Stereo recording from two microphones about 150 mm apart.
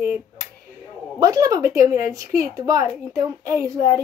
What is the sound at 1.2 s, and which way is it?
A child's voice, 25° right (ahead or behind).